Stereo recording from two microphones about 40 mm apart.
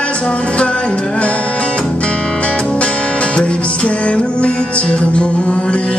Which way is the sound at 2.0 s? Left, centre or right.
Left.